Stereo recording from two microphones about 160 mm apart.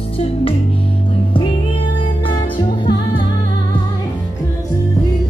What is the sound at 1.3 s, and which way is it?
Music, 35° left (ahead or behind).